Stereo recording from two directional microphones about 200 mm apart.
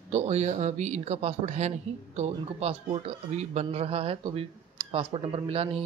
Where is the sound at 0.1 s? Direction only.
35° right (ahead or behind).